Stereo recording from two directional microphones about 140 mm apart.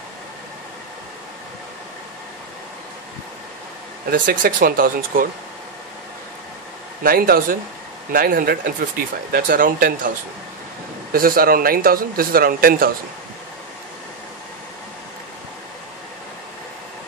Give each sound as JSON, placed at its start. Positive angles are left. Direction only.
{"t": 4.1, "sound": "speech", "side_deg": -80}
{"t": 7.0, "sound": "speech", "side_deg": -90}